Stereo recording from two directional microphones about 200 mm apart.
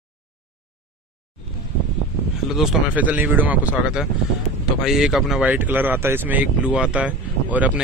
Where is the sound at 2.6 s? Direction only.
5° right (ahead or behind).